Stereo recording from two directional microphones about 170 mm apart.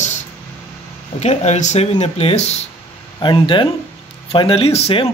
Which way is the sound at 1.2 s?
40° left (ahead or behind).